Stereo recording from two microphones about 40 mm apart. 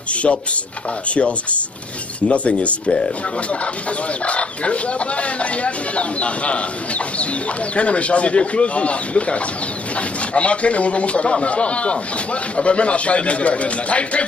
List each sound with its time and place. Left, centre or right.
0.1 s speech: left
4.3 s speech: left